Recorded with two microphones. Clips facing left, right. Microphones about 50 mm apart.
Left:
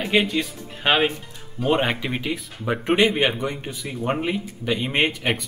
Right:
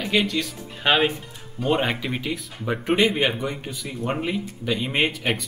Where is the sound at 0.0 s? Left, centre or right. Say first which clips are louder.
Left 2 dB; centre.